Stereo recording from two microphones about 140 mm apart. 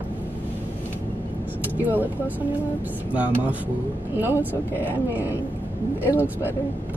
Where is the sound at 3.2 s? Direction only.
10° right (ahead or behind).